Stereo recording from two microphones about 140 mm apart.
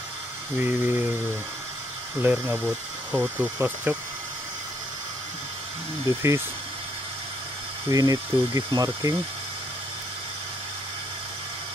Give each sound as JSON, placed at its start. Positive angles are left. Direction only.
{"t": 0.6, "sound": "speech", "side_deg": -15}
{"t": 2.2, "sound": "speech", "side_deg": -15}
{"t": 6.0, "sound": "speech", "side_deg": -20}
{"t": 7.9, "sound": "speech", "side_deg": -25}